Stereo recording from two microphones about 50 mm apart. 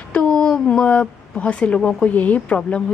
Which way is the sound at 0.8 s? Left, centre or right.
Left.